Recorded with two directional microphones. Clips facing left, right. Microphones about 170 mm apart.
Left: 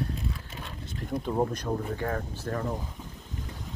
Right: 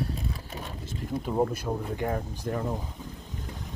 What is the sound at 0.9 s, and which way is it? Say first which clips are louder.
Speech: left 1 dB; 5° right (ahead or behind).